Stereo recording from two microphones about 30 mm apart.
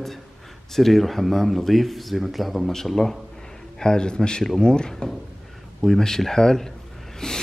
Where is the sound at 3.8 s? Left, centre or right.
Left.